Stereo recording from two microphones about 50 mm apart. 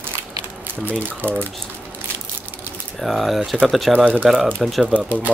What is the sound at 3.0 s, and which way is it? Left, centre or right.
Speech, centre.